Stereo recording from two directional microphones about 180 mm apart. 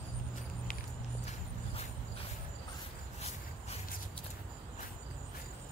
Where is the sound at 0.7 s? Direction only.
55° left (ahead or behind).